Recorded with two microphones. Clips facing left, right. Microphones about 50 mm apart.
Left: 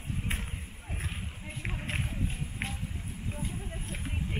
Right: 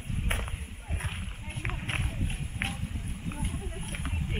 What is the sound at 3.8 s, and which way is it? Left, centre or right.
Speech, right.